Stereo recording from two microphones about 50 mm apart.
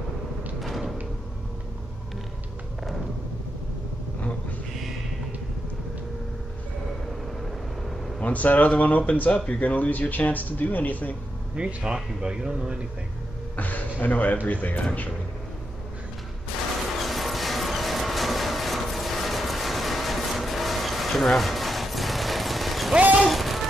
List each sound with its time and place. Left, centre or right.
0.6 s door: centre
8.2 s speech: left
11.5 s speech: centre
13.6 s speech: left
17.0 s music: centre
23.2 s a sound: centre